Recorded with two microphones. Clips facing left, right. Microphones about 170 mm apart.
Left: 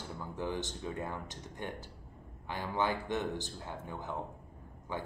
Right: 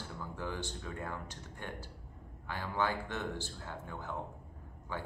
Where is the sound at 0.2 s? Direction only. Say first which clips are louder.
Left 4 dB; 20° left (ahead or behind).